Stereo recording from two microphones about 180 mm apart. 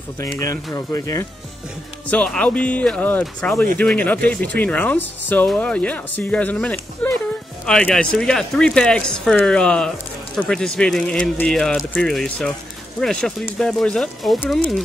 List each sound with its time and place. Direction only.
0.4 s speech: 20° left (ahead or behind)
2.0 s speech: 5° left (ahead or behind)